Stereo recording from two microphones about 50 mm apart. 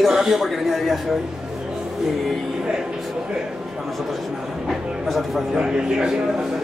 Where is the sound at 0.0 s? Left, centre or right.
Centre.